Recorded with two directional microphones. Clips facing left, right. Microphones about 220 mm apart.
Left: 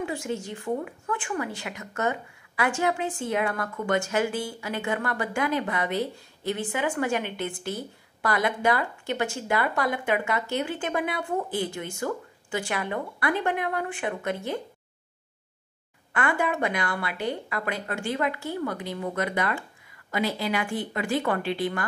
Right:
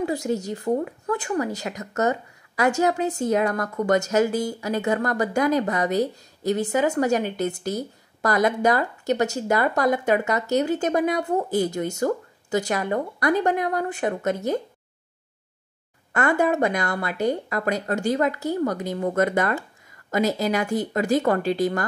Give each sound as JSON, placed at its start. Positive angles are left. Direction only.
{"t": 0.0, "sound": "a woman's voice", "side_deg": -40}
{"t": 16.1, "sound": "a woman's voice", "side_deg": -40}